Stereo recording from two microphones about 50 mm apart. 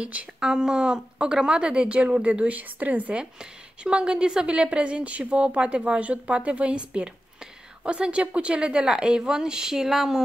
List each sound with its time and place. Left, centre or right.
0.4 s speech: centre